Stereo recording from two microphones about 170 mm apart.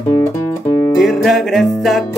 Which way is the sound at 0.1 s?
15° left (ahead or behind).